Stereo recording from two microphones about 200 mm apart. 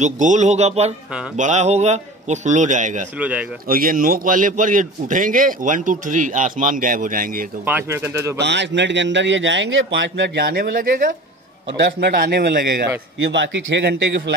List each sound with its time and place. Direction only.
0.0 s a man's voice: 35° right (ahead or behind)
3.2 s speech: 5° right (ahead or behind)
3.6 s a man's voice: 45° right (ahead or behind)
7.6 s speech: 10° right (ahead or behind)
8.4 s a man's voice: 60° right (ahead or behind); by 11.1 s 45° right (ahead or behind)
11.8 s a man's voice: 55° right (ahead or behind)
13.2 s a man's voice: 65° right (ahead or behind)